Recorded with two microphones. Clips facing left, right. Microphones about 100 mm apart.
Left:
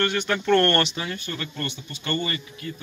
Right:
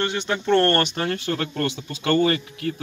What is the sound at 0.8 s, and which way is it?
Speech, 55° right (ahead or behind).